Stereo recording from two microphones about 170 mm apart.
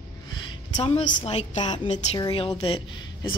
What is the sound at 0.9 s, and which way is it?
Speech, 40° left (ahead or behind).